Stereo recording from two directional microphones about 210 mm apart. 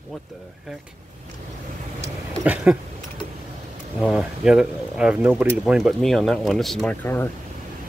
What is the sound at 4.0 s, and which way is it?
Speech, 5° right (ahead or behind).